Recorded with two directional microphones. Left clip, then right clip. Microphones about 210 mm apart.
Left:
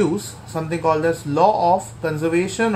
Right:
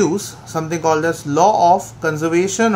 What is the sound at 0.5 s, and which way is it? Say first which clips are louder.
Speech: right 3 dB; 25° right (ahead or behind).